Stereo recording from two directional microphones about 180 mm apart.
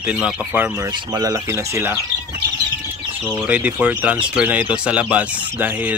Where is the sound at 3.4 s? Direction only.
10° right (ahead or behind).